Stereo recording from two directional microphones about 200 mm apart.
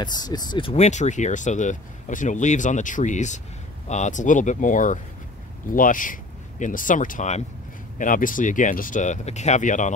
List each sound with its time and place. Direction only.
0.0 s speech: 20° left (ahead or behind); by 9.9 s 40° left (ahead or behind)